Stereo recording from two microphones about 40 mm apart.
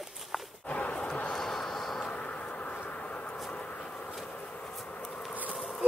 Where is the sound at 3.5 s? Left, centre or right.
Left.